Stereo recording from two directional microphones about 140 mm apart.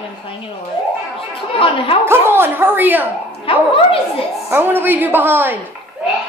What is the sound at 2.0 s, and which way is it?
A woman's voice, 15° right (ahead or behind).